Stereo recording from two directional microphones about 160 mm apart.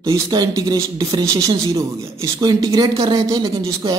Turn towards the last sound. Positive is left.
turn(degrees=-20)  # may be behind; listen again after turning